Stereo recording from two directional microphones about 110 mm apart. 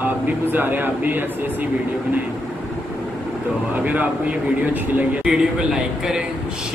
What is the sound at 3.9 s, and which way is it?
A man's voice, 15° right (ahead or behind).